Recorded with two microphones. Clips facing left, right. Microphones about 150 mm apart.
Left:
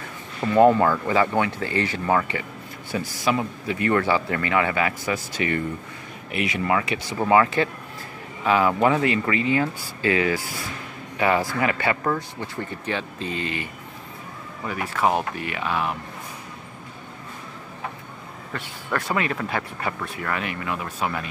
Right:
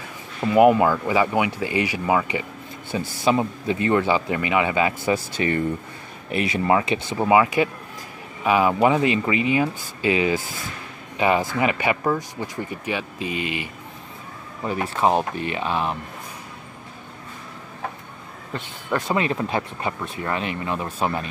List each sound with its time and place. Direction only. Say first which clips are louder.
0.4 s speech: right 1 dB; 15° right (ahead or behind)
2.9 s speech: right 3 dB; 25° right (ahead or behind)
7.2 s speech: right 1 dB; 15° right (ahead or behind)
14.6 s speech: right 2 dB; 25° right (ahead or behind)
18.5 s speech: right 2 dB; 20° right (ahead or behind)